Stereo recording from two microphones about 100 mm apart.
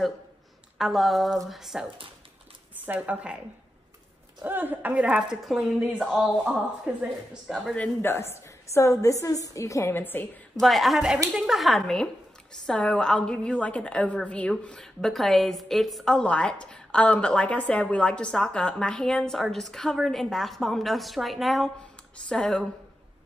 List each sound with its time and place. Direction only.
0.7 s speech: centre (ahead or behind)
2.8 s a woman's voice: 15° right (ahead or behind)
4.5 s a woman's voice: 20° right (ahead or behind)
7.7 s a woman's voice: 20° left (ahead or behind)
10.6 s a woman's voice: centre (ahead or behind)